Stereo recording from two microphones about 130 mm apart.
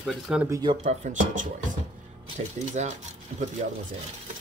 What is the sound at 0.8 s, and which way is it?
Speech, 70° right (ahead or behind).